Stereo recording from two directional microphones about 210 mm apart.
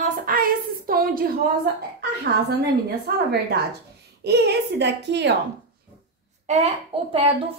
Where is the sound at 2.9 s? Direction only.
50° right (ahead or behind).